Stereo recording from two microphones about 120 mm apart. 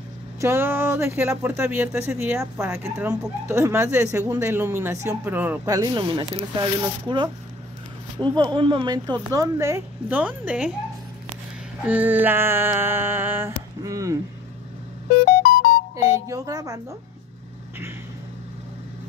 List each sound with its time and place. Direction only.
0.4 s speech: 20° right (ahead or behind)
3.1 s speech: 25° right (ahead or behind)
5.7 s speech: 30° right (ahead or behind)
5.9 s speech: 40° right (ahead or behind); by 10.7 s 10° right (ahead or behind)
11.8 s speech: 15° right (ahead or behind)
16.1 s speech: 30° right (ahead or behind)